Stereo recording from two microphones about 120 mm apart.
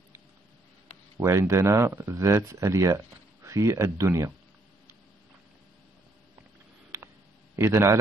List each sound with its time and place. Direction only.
1.2 s speech: 25° right (ahead or behind)
6.9 s hum: 25° right (ahead or behind)
7.5 s speech: 25° right (ahead or behind)